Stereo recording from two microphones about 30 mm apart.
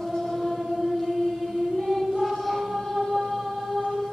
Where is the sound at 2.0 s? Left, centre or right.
Centre.